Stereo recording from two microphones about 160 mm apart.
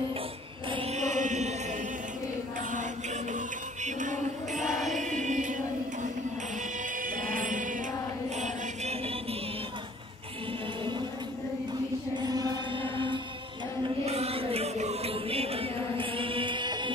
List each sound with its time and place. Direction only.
0.7 s chant: 35° right (ahead or behind)
3.3 s music: 50° right (ahead or behind)
5.0 s chant: 50° right (ahead or behind)
7.0 s music: 60° right (ahead or behind)
8.4 s chant: 40° right (ahead or behind)
12.2 s mantra: 25° right (ahead or behind)
14.0 s chant: 40° right (ahead or behind)